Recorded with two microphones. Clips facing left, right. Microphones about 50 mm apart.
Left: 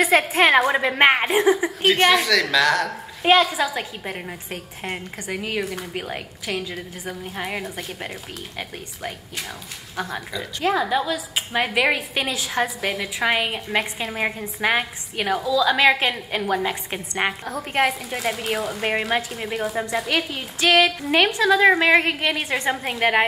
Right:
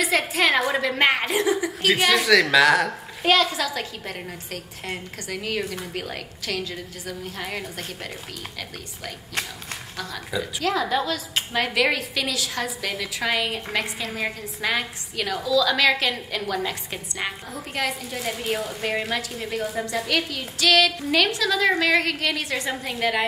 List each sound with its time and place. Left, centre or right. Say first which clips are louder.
0.0 s speech: left 4 dB; left
2.2 s a woman's voice: right 2 dB; centre
3.3 s a woman's voice: left 3 dB; centre
9.9 s speech: left 2 dB; left
11.0 s a woman's voice: left 2 dB; centre; by 12.6 s left
12.6 s a woman's voice: left 3 dB; centre
13.0 s speech: left 3 dB; left
17.2 s a woman's voice: left 7 dB; left